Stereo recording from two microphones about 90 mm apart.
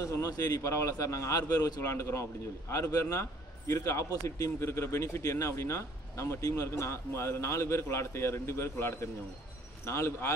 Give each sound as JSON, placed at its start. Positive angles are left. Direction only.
{"t": 0.0, "sound": "a man's voice", "side_deg": 35}